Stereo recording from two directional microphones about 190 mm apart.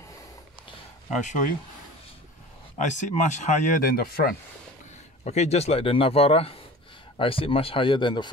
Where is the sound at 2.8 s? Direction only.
40° left (ahead or behind).